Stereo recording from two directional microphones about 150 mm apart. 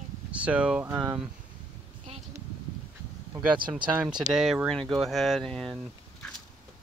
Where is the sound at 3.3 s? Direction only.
30° right (ahead or behind).